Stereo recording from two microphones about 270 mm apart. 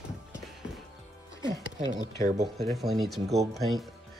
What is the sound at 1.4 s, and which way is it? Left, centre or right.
Music, centre.